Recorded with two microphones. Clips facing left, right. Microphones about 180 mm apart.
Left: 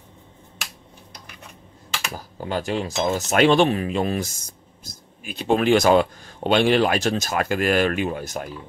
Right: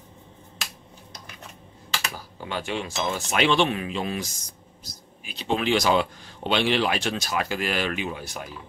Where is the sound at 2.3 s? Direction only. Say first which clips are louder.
Left 5 dB; 40° left (ahead or behind).